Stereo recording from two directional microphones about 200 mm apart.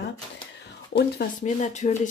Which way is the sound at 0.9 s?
55° left (ahead or behind).